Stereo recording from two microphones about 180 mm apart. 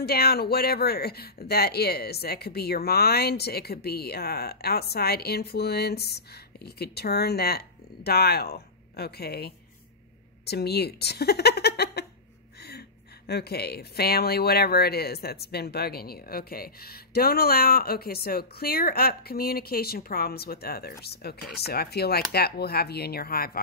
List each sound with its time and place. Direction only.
0.0 s speech: 60° left (ahead or behind)
13.3 s speech: 60° left (ahead or behind)